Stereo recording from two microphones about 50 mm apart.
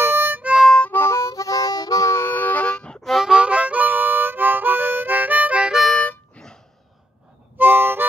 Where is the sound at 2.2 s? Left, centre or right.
Left.